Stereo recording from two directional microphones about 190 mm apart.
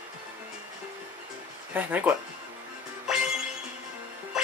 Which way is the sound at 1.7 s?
10° right (ahead or behind).